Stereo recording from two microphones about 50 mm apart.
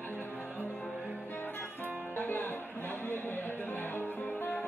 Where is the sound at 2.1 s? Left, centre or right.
Left.